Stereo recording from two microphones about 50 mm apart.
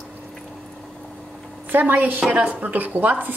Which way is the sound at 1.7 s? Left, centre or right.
Right.